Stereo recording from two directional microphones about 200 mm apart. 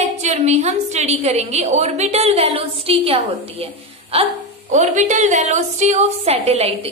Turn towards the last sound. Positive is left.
turn(degrees=-30)  # may be behind; listen again after turning